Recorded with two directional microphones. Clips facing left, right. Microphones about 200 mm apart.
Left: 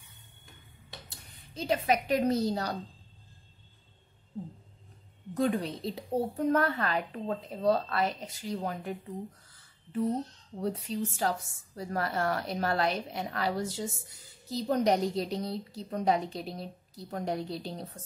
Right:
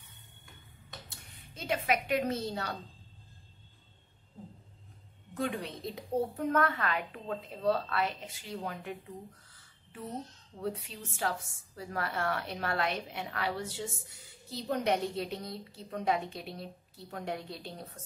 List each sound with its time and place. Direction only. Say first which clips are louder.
1.0 s a woman's voice: even; 35° left (ahead or behind)
5.3 s a woman's voice: left 6 dB; 40° left (ahead or behind)
10.6 s a woman's voice: left 6 dB; 40° left (ahead or behind)